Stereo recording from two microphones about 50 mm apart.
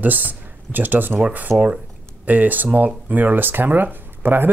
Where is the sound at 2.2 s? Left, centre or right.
Right.